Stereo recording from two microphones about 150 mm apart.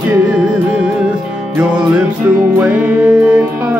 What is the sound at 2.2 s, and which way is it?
Music, 10° right (ahead or behind).